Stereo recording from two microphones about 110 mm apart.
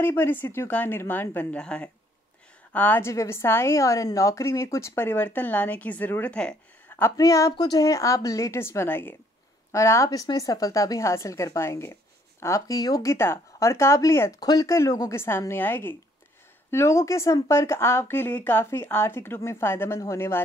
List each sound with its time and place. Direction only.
0.0 s a woman's voice: 20° left (ahead or behind)
7.0 s a woman's voice: 30° left (ahead or behind)